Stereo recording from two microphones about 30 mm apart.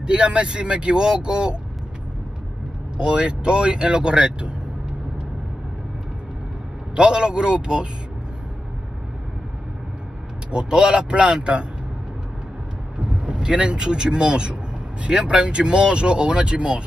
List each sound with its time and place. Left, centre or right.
0.0 s speech: right
3.0 s speech: right
7.0 s speech: right
10.5 s speech: right
12.9 s vehicle: right
13.7 s speech: right